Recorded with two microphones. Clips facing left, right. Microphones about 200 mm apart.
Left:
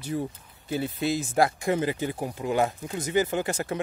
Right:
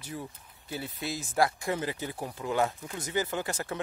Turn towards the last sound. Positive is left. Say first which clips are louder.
# left 5 dB
turn(degrees=15)  # may be behind; listen again after turning